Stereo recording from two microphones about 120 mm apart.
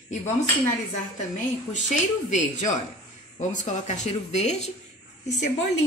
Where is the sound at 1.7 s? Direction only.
90° left.